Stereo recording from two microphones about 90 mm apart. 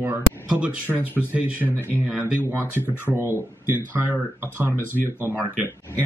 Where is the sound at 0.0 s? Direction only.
20° right (ahead or behind).